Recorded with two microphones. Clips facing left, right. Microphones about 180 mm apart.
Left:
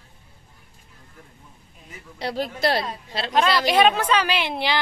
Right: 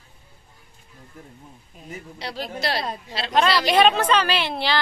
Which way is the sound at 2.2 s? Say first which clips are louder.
Left 6 dB; 50° left (ahead or behind).